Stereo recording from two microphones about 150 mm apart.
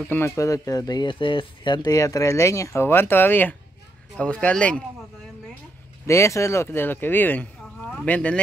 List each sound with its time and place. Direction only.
0.1 s speech: 20° left (ahead or behind)
6.0 s speech: 20° left (ahead or behind)